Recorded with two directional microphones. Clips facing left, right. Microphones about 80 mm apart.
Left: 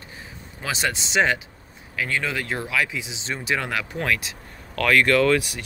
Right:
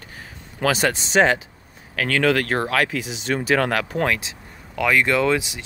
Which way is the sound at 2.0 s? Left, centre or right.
Right.